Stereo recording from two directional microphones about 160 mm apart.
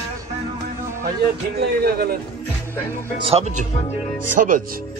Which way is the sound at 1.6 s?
80° right.